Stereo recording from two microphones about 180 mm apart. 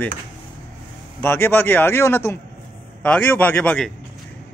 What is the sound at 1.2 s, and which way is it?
Speech, 10° left (ahead or behind).